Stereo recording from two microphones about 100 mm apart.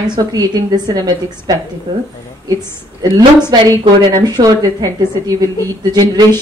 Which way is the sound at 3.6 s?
40° right (ahead or behind).